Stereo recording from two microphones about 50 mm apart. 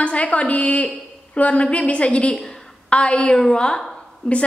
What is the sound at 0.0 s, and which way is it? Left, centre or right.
A woman's voice, left.